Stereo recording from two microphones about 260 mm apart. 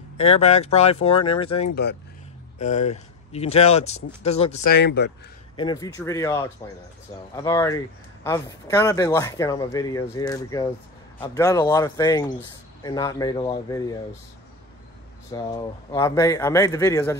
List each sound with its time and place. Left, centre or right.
0.2 s speech: left
4.6 s speech: left
5.6 s speech: centre
15.3 s speech: centre